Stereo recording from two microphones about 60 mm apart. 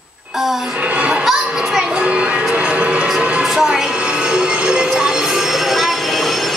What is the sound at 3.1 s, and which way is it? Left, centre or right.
Music, centre.